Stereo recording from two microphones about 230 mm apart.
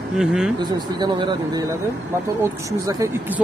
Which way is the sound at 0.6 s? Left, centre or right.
Centre.